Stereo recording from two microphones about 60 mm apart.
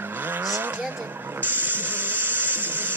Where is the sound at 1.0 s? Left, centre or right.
Right.